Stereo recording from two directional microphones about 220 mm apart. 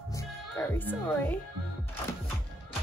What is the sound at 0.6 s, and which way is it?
Speech, 10° left (ahead or behind).